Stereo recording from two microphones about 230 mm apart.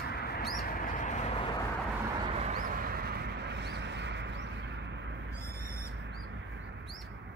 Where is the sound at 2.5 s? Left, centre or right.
Right.